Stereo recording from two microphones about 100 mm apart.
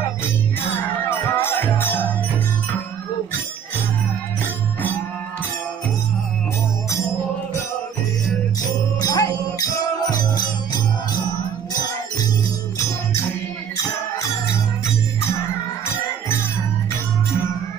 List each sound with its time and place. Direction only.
1.3 s music: 20° left (ahead or behind)
9.0 s jingle bell: 35° left (ahead or behind)